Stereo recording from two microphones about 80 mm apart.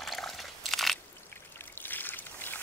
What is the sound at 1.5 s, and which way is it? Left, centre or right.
Trickle, left.